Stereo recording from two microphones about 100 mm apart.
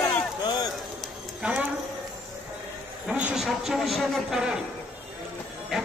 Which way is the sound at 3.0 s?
10° right (ahead or behind).